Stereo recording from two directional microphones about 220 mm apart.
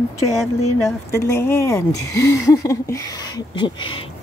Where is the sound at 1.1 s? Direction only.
10° left (ahead or behind).